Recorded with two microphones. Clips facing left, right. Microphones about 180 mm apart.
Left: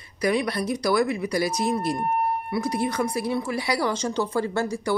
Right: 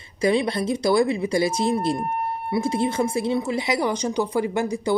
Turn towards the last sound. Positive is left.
turn(degrees=-15)  # may be behind; listen again after turning